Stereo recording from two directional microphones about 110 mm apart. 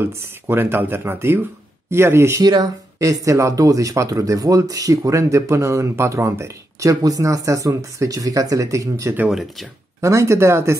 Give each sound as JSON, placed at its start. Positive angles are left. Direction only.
{"t": 0.0, "sound": "speech", "side_deg": -20}
{"t": 2.4, "sound": "speech", "side_deg": -35}
{"t": 9.3, "sound": "speech", "side_deg": 0}
{"t": 10.0, "sound": "speech", "side_deg": -25}